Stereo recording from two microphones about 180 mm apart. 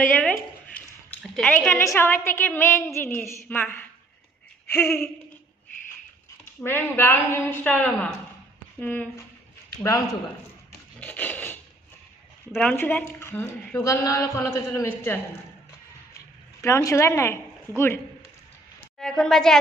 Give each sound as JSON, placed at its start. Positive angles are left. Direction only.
{"t": 0.1, "sound": "a sound", "side_deg": 10}
{"t": 1.8, "sound": "speech", "side_deg": 15}
{"t": 6.6, "sound": "speech", "side_deg": 10}
{"t": 11.0, "sound": "a sound", "side_deg": 10}
{"t": 12.5, "sound": "speech", "side_deg": 10}
{"t": 16.6, "sound": "speech", "side_deg": 15}
{"t": 18.9, "sound": "a woman's voice", "side_deg": 5}